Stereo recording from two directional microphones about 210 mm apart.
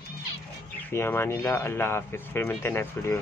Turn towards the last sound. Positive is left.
turn(degrees=10)  # may be behind; listen again after turning